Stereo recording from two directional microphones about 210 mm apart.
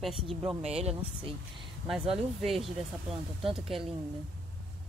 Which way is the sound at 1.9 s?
Centre (ahead or behind).